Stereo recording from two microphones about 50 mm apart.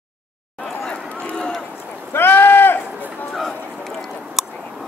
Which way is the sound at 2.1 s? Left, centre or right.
Left.